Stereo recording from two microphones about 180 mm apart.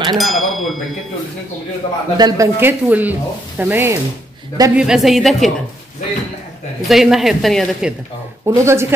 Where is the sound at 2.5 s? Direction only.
10° right (ahead or behind).